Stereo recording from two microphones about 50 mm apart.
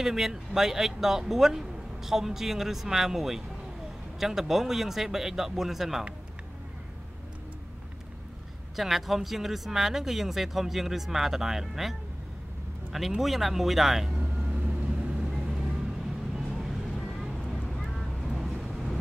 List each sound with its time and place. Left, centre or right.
0.0 s speech: centre
8.7 s speech: centre
13.2 s speech: centre
14.5 s vehicle: right
16.3 s vehicle: centre